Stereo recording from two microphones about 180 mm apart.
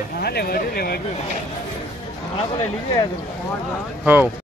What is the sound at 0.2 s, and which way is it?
Speech, 60° left (ahead or behind).